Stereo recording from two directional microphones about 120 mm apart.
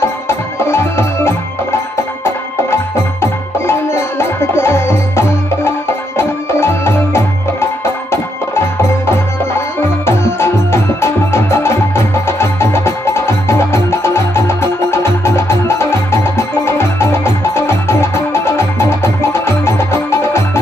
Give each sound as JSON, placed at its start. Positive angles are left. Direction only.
{"t": 0.3, "sound": "music", "side_deg": 20}